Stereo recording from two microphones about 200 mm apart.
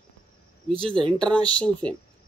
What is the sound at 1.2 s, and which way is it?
Speech, 5° left (ahead or behind).